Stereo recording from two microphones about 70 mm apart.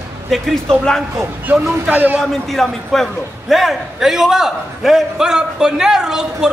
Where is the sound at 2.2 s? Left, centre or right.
Centre.